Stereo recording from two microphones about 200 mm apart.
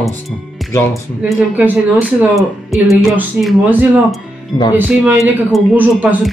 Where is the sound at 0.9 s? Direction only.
5° right (ahead or behind).